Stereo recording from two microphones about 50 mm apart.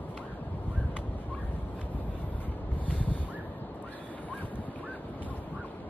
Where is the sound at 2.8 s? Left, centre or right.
Left.